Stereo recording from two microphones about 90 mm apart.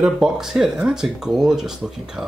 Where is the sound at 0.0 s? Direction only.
5° right (ahead or behind).